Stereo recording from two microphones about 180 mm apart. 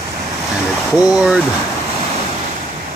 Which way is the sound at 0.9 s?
5° right (ahead or behind).